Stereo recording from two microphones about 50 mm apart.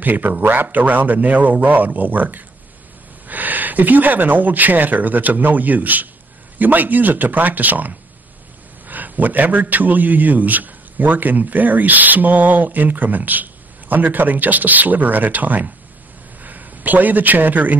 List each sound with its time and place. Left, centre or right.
0.0 s a man's voice: right